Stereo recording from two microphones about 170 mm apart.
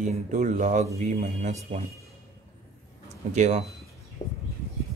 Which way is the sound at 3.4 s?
40° right (ahead or behind).